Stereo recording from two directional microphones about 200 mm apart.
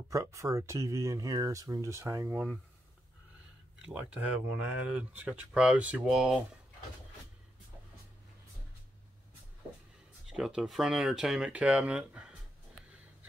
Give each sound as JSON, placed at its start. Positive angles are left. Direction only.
{"t": 0.1, "sound": "speech", "side_deg": -15}
{"t": 3.8, "sound": "speech", "side_deg": -5}
{"t": 10.3, "sound": "speech", "side_deg": -5}